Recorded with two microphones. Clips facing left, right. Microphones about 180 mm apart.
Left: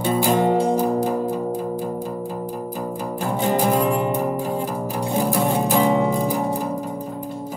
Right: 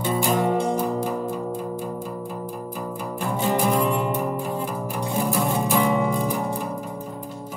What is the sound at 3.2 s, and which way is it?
Music, 35° left (ahead or behind).